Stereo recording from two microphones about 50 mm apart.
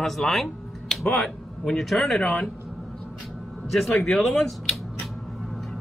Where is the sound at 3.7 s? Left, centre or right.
Centre.